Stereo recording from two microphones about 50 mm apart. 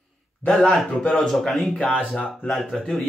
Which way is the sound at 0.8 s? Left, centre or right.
Centre.